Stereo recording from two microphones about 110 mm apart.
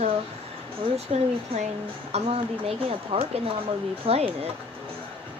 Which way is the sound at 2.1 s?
70° right (ahead or behind).